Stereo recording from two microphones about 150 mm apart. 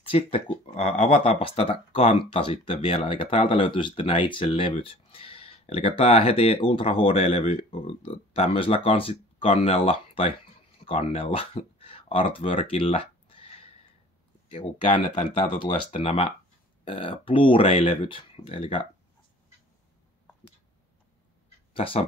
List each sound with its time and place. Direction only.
0.0 s speech: 40° left (ahead or behind)
15.0 s speech: 55° left (ahead or behind)
15.4 s speech: 40° left (ahead or behind)
21.7 s speech: 40° left (ahead or behind)